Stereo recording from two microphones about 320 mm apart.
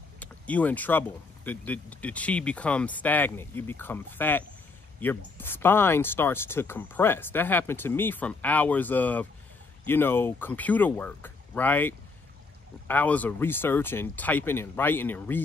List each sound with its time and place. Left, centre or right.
0.2 s speech: centre